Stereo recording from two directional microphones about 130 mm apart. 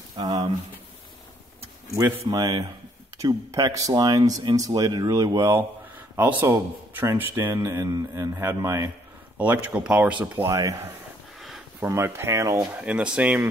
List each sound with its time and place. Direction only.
0.2 s a man's voice: 30° right (ahead or behind)
2.2 s a man's voice: 30° right (ahead or behind)
11.3 s a sound: centre (ahead or behind)
11.8 s a man's voice: 20° right (ahead or behind)
12.7 s speech: 10° right (ahead or behind)